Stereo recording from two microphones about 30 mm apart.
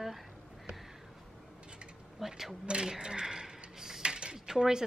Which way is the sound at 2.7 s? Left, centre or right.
Right.